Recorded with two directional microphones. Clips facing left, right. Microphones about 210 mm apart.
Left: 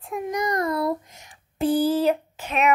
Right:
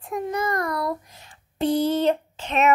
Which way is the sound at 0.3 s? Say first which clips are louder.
Left 3 dB; 15° left (ahead or behind).